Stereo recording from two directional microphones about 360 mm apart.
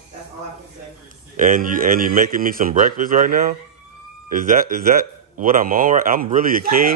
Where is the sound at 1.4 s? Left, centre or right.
Right.